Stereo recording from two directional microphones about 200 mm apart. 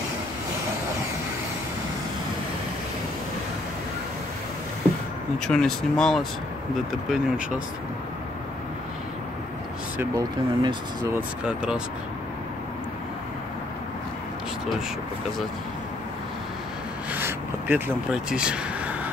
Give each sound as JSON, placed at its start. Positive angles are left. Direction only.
{"t": 5.5, "sound": "speech", "side_deg": 5}
{"t": 9.9, "sound": "speech", "side_deg": -20}
{"t": 11.1, "sound": "speech", "side_deg": -5}
{"t": 17.1, "sound": "rub", "side_deg": -10}